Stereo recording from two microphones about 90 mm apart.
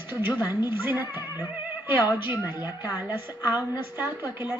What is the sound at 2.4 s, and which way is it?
A man's voice, 25° right (ahead or behind).